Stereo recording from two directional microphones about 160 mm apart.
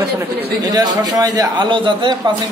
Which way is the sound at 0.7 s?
25° right (ahead or behind).